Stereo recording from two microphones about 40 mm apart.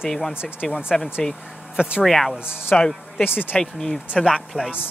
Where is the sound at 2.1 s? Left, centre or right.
Centre.